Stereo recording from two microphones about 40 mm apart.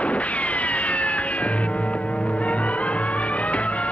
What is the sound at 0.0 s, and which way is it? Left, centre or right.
Music, left.